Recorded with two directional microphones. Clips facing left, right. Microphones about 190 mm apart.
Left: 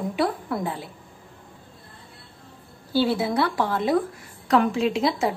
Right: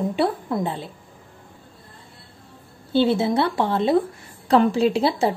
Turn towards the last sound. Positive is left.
turn(degrees=-35)  # may be behind; listen again after turning